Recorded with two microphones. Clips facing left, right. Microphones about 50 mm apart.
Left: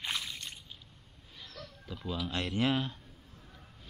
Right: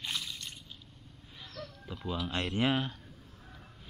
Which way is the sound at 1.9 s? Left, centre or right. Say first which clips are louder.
Right 1 dB; centre.